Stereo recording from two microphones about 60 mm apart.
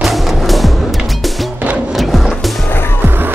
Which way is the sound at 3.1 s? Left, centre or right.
Right.